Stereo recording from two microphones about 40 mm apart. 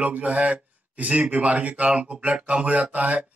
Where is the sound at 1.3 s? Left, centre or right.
Right.